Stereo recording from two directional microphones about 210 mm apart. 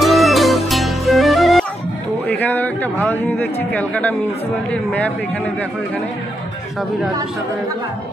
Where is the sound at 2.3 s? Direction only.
5° left (ahead or behind).